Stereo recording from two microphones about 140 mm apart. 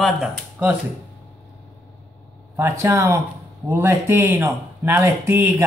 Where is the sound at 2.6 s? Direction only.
20° right (ahead or behind).